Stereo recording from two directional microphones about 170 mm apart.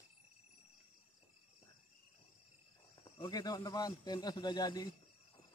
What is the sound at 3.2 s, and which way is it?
A man's voice, 20° left (ahead or behind).